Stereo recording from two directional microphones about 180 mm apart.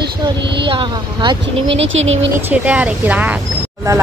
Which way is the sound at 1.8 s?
90° right.